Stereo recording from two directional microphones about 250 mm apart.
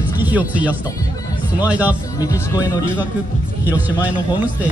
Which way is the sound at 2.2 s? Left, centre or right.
Centre.